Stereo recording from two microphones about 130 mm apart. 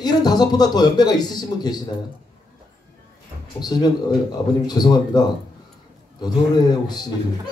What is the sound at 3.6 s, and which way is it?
Speech, 30° left (ahead or behind).